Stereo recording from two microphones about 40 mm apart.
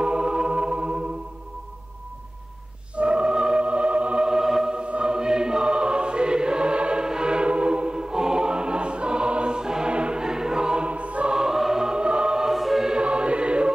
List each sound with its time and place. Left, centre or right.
0.0 s music: right
3.0 s music: right
4.3 s music: centre
4.7 s music: right
10.9 s music: right
11.3 s music: centre
12.0 s music: right
12.4 s choir: centre
12.8 s music: right